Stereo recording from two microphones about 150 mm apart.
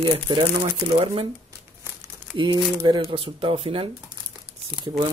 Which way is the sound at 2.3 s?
30° right (ahead or behind).